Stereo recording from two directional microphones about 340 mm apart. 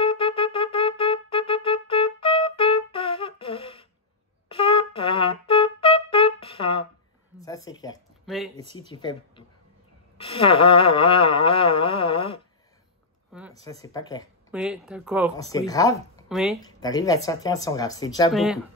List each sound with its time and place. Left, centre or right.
0.0 s music: centre
4.5 s brass instrument: centre
7.3 s speech: centre
8.6 s a sound: centre
13.5 s speech: centre
14.5 s speech: centre
15.3 s a sound: centre
16.3 s speech: centre
16.6 s a sound: centre
18.3 s speech: centre